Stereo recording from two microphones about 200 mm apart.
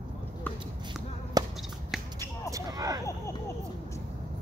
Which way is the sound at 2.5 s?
15° right (ahead or behind).